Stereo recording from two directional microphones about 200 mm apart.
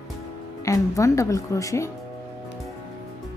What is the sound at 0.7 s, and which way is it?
Speech, 15° left (ahead or behind).